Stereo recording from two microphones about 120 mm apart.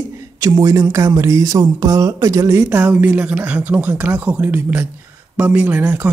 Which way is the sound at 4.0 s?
15° right (ahead or behind).